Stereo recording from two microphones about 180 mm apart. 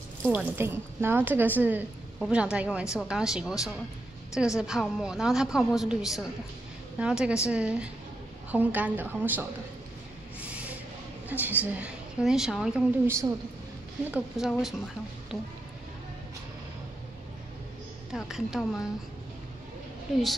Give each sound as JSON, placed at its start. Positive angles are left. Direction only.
{"t": 0.3, "sound": "a woman's voice", "side_deg": -10}
{"t": 4.6, "sound": "a woman's voice", "side_deg": -5}
{"t": 10.4, "sound": "a sound", "side_deg": -5}
{"t": 11.2, "sound": "a woman's voice", "side_deg": -10}
{"t": 14.1, "sound": "a woman's voice", "side_deg": -5}
{"t": 18.1, "sound": "a woman's voice", "side_deg": 0}
{"t": 20.1, "sound": "a woman's voice", "side_deg": 0}